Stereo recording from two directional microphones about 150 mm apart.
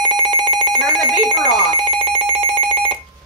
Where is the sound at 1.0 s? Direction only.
30° right (ahead or behind).